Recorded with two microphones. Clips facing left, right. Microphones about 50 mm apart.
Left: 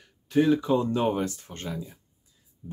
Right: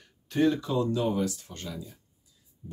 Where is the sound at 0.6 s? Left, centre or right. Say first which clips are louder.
Left 3 dB; left.